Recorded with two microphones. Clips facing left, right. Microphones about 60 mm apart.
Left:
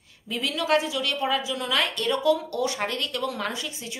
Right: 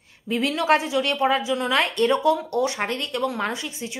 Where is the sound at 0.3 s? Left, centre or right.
Right.